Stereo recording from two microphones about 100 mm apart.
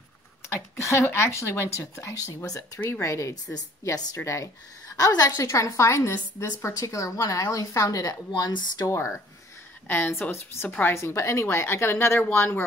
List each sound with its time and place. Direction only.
0.5 s a woman's voice: 25° left (ahead or behind)
9.8 s speech: 20° left (ahead or behind)